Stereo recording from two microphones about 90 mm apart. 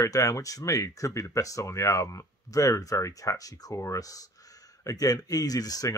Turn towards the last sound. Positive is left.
turn(degrees=45)  # may be behind; listen again after turning